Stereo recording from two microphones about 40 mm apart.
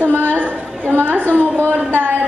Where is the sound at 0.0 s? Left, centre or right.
Right.